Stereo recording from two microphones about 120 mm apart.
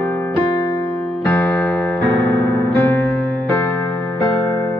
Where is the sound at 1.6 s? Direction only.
10° left (ahead or behind).